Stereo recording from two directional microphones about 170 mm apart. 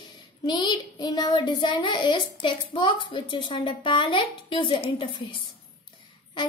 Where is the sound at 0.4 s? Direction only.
25° left (ahead or behind).